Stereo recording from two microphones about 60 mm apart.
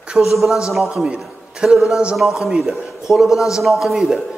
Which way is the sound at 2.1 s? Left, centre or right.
Centre.